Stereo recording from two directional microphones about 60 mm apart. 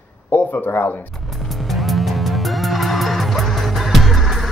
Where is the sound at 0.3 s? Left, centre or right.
Left.